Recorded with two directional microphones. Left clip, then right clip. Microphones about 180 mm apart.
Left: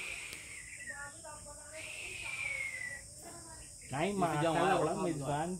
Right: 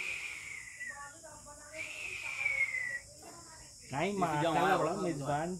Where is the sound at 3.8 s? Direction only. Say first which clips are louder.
Even; 10° right (ahead or behind).